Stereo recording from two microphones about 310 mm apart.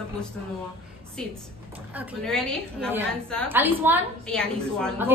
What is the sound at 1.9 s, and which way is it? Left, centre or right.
A woman's voice, centre.